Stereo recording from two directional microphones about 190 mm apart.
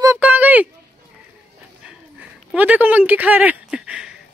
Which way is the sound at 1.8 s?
5° right (ahead or behind).